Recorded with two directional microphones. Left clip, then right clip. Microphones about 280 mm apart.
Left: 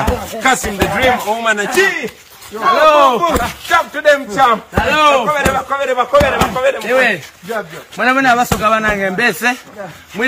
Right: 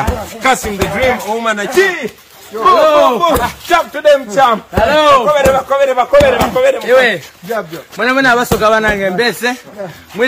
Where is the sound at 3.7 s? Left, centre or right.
Right.